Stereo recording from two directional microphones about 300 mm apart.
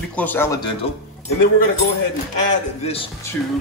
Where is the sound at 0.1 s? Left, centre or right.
Centre.